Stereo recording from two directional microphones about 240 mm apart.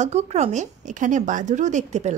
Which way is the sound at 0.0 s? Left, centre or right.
Right.